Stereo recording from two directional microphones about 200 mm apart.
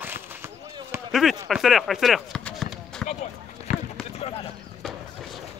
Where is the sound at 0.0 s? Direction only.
10° right (ahead or behind).